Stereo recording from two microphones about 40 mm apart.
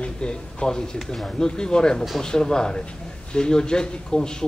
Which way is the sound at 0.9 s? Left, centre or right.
Centre.